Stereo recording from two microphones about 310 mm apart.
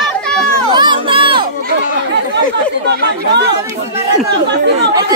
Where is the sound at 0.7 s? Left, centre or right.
Centre.